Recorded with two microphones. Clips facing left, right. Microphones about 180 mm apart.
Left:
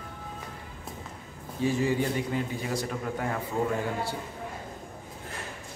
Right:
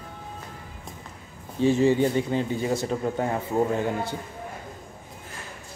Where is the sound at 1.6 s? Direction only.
25° right (ahead or behind).